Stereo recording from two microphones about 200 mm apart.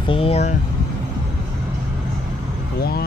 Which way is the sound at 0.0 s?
30° left (ahead or behind).